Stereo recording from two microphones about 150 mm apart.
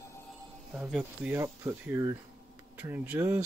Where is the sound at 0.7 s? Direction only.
10° right (ahead or behind).